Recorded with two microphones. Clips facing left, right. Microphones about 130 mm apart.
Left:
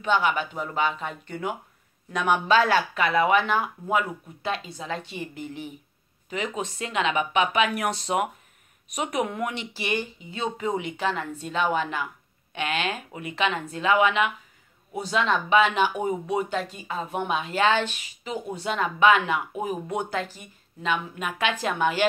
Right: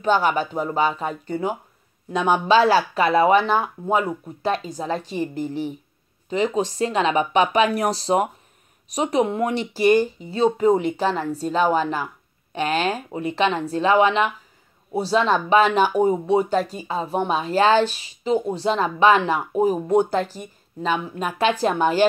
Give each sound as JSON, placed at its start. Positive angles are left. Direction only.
{"t": 0.0, "sound": "speech", "side_deg": -40}